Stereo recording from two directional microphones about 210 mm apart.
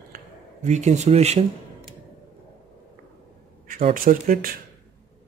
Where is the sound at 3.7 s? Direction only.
40° right (ahead or behind).